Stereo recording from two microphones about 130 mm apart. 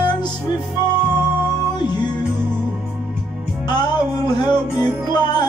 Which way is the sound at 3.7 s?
35° left (ahead or behind).